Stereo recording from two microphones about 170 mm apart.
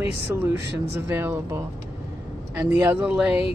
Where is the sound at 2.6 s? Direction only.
15° right (ahead or behind).